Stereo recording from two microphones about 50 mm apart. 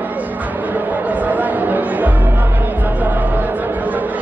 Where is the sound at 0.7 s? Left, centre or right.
Right.